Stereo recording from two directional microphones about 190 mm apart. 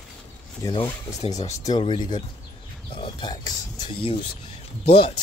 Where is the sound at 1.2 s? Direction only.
35° left (ahead or behind).